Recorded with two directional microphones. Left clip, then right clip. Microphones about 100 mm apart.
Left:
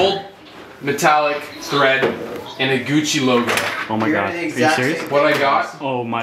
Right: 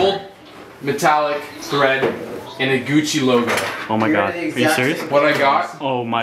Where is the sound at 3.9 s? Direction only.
15° right (ahead or behind).